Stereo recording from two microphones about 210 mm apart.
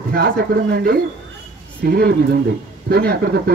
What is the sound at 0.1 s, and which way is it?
A man's voice, 45° right (ahead or behind).